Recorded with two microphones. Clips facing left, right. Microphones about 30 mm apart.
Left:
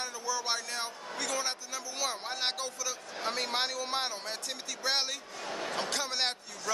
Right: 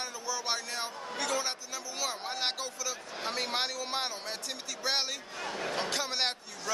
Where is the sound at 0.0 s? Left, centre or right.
Centre.